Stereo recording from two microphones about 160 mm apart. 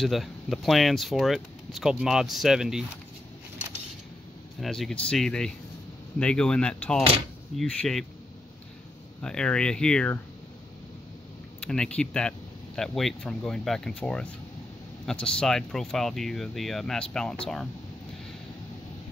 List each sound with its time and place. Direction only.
0.0 s speech: centre (ahead or behind)
4.6 s speech: centre (ahead or behind)
9.2 s speech: 5° left (ahead or behind)
11.6 s speech: 5° left (ahead or behind)